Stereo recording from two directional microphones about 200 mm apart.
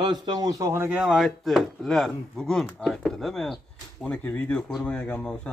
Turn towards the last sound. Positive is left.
turn(degrees=5)  # may be behind; listen again after turning